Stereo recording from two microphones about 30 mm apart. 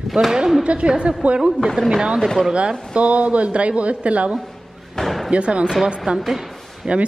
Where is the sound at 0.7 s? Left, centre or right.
Right.